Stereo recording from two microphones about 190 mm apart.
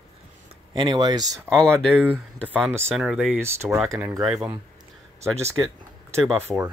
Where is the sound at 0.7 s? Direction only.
25° right (ahead or behind).